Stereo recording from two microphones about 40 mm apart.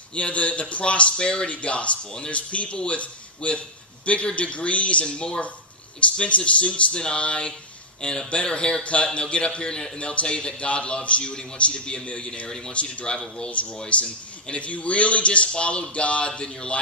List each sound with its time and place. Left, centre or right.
0.1 s a man's voice: left
12.4 s a man's voice: centre